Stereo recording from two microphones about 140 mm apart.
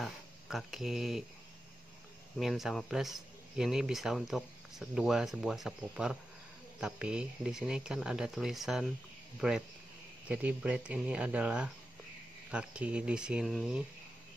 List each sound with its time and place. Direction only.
0.0 s speech: centre (ahead or behind)
2.3 s speech: centre (ahead or behind)
10.2 s speech: 10° right (ahead or behind)